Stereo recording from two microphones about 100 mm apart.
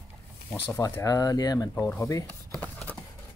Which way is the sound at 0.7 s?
30° left (ahead or behind).